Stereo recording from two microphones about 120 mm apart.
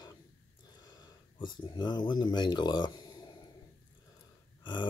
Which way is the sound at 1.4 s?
40° left (ahead or behind).